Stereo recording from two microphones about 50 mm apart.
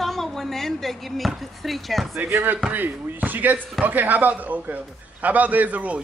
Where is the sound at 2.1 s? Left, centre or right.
Right.